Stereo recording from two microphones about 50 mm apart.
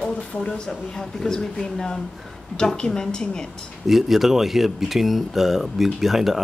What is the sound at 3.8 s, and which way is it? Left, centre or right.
Speech, centre.